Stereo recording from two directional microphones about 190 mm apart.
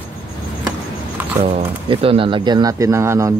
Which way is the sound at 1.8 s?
30° right (ahead or behind).